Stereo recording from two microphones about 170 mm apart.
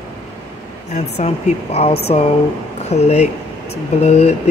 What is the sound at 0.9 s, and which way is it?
Speech, 40° left (ahead or behind).